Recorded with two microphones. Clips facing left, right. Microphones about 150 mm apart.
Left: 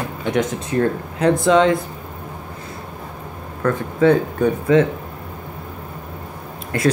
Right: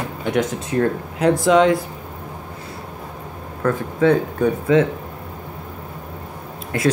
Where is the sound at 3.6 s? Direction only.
5° right (ahead or behind).